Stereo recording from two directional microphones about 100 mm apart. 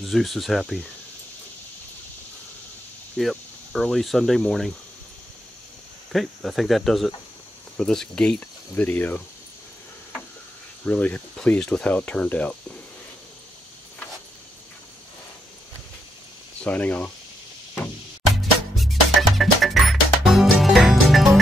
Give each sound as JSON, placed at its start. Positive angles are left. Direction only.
{"t": 0.0, "sound": "speech", "side_deg": 0}
{"t": 3.2, "sound": "speech", "side_deg": 0}
{"t": 6.1, "sound": "speech", "side_deg": 0}
{"t": 10.9, "sound": "speech", "side_deg": 15}
{"t": 16.6, "sound": "speech", "side_deg": 15}
{"t": 19.3, "sound": "music", "side_deg": 0}